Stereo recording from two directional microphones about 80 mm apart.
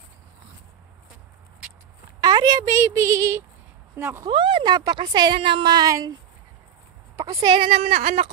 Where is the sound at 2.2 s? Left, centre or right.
Right.